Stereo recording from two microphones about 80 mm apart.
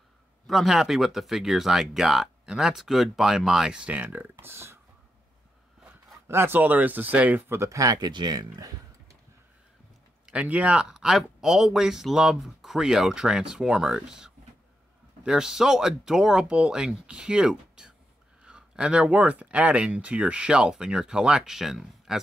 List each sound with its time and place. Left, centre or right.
0.5 s speech: centre; by 4.7 s right
6.2 s speech: right
7.5 s speech: right
7.8 s speech: right
8.1 s speech: right
10.3 s speech: centre